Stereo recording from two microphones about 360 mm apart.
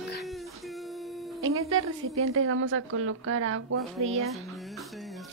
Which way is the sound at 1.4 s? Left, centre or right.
Right.